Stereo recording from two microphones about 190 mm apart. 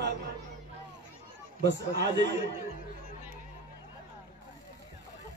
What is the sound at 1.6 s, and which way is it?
Speech, 65° right (ahead or behind).